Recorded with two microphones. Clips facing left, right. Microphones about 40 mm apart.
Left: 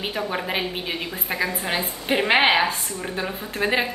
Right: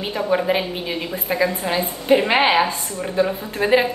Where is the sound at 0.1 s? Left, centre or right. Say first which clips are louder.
Right 10 dB; centre.